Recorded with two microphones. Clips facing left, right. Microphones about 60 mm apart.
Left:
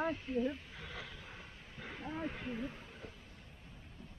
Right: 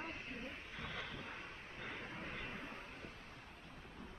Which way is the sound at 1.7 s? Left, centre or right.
Centre.